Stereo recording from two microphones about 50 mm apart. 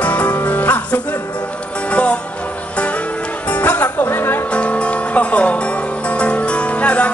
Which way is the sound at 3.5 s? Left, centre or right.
Left.